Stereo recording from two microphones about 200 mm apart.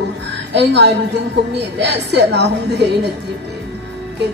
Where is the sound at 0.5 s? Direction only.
60° right (ahead or behind).